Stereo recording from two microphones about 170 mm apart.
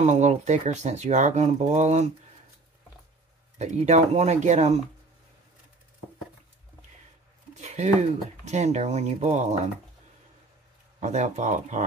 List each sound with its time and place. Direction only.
0.0 s speech: 45° right (ahead or behind)
3.5 s speech: 45° right (ahead or behind)
7.5 s a sound: 40° right (ahead or behind)
8.5 s speech: 40° right (ahead or behind)
11.0 s speech: 45° right (ahead or behind)